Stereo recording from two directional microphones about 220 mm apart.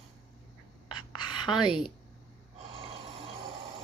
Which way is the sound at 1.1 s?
20° left (ahead or behind).